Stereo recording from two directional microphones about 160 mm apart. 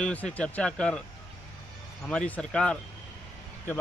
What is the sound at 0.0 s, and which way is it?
Speech, 10° left (ahead or behind).